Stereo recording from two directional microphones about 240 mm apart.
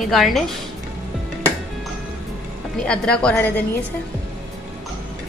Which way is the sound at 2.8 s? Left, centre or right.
Centre.